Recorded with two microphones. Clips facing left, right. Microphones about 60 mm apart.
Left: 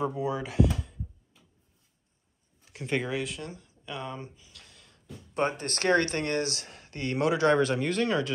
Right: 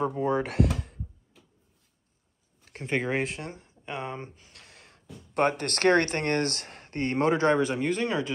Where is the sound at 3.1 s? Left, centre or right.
Right.